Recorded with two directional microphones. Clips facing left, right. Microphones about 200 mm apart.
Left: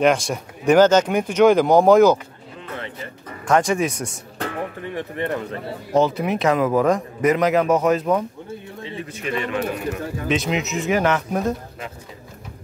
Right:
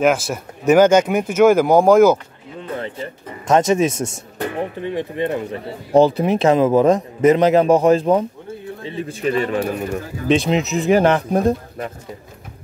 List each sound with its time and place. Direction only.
0.0 s speech: 5° right (ahead or behind)
2.7 s music: 30° right (ahead or behind)
3.4 s a man's voice: 20° right (ahead or behind)
5.9 s a man's voice: 30° right (ahead or behind)